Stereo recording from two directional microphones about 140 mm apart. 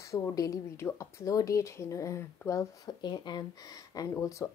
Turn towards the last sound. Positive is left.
turn(degrees=25)  # may be behind; listen again after turning